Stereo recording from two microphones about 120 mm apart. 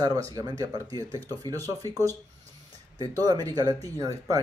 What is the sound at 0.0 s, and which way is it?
Speech, 30° right (ahead or behind).